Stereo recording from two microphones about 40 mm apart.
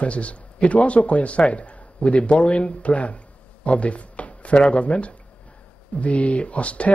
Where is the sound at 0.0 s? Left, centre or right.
Left.